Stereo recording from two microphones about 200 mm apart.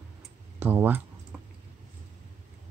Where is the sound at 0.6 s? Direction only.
10° right (ahead or behind).